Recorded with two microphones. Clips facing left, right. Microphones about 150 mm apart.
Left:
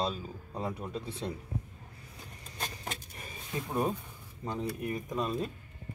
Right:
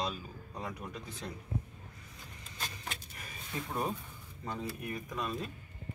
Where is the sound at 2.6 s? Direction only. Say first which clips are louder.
Left 4 dB; 35° left (ahead or behind).